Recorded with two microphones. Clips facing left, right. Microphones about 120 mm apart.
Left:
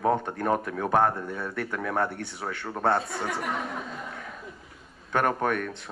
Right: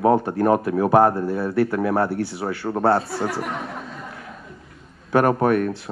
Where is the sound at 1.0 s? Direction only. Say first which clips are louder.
Right 7 dB; 30° right (ahead or behind).